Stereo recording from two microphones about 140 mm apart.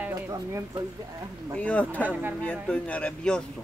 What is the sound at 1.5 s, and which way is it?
Speech, 10° left (ahead or behind).